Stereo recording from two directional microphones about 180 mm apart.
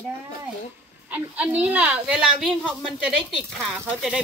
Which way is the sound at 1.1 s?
10° right (ahead or behind).